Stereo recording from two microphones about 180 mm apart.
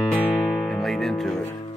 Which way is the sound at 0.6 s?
Centre (ahead or behind).